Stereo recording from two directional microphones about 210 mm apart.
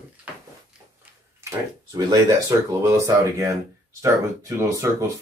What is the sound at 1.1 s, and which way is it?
Tick-tock, 5° right (ahead or behind).